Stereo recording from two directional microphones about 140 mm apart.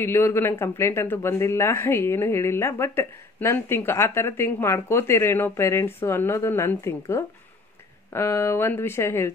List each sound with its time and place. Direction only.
0.0 s speech: 15° left (ahead or behind)